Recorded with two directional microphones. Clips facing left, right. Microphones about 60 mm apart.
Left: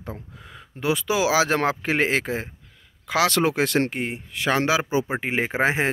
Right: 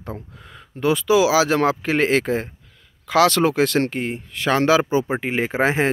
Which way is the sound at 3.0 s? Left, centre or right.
Left.